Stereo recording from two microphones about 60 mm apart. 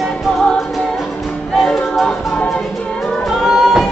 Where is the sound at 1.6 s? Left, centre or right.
Centre.